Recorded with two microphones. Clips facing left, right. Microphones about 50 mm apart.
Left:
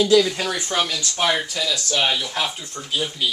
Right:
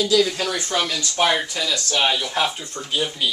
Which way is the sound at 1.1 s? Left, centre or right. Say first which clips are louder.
Right 2 dB; centre.